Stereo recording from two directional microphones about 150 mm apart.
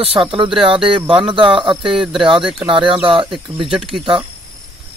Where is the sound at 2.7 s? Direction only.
35° right (ahead or behind).